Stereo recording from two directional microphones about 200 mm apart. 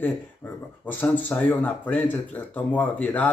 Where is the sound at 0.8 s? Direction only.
10° left (ahead or behind).